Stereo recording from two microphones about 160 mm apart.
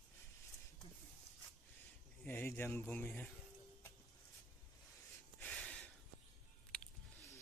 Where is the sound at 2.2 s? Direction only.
10° left (ahead or behind).